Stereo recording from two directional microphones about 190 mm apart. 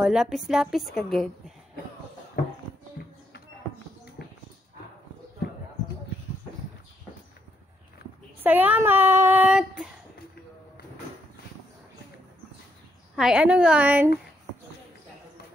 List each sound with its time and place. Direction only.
0.0 s a woman's voice: 5° right (ahead or behind)
4.2 s dog: 55° left (ahead or behind)
8.4 s speech: 10° right (ahead or behind)
13.1 s a woman's voice: 5° right (ahead or behind)